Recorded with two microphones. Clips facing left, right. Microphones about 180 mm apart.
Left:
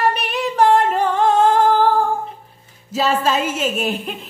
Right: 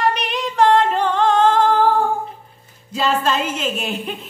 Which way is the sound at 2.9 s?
5° left (ahead or behind).